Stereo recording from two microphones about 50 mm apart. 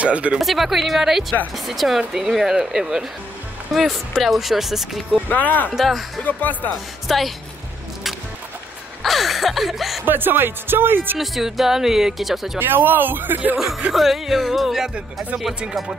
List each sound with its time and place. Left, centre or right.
0.0 s speech: right
0.4 s speech: centre
5.3 s speech: left
5.7 s speech: centre
6.2 s speech: left
6.7 s speech: centre
9.0 s a sound: centre
10.0 s speech: right
11.1 s speech: centre
12.5 s speech: right
13.9 s speech: centre